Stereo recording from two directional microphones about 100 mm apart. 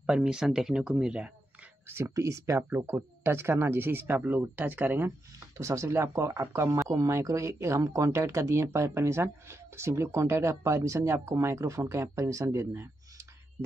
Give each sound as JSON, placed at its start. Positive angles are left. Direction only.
{"t": 0.0, "sound": "speech", "side_deg": -10}
{"t": 1.9, "sound": "speech", "side_deg": -25}
{"t": 5.6, "sound": "speech", "side_deg": -30}